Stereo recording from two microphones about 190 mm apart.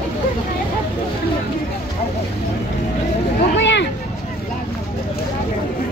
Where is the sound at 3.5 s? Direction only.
70° left (ahead or behind).